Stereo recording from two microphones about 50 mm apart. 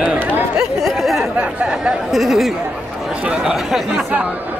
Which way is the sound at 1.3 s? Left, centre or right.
Right.